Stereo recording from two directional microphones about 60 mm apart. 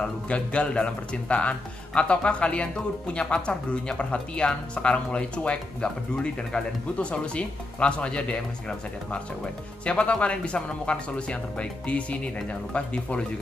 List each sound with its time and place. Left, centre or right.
0.0 s speech: centre